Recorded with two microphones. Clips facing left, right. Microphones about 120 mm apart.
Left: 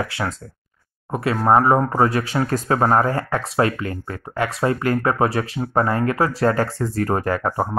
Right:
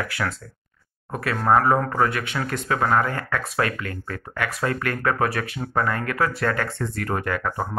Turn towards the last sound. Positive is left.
turn(degrees=35)  # may be behind; listen again after turning